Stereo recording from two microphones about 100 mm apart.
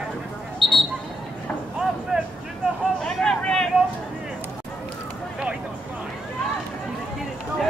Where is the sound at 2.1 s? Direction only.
5° right (ahead or behind).